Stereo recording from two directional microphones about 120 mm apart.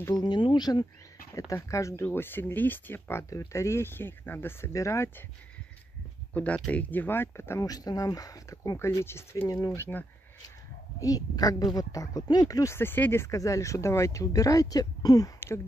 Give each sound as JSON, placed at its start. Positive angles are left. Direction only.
{"t": 0.1, "sound": "speech", "side_deg": 35}
{"t": 6.3, "sound": "speech", "side_deg": 10}
{"t": 11.0, "sound": "speech", "side_deg": 30}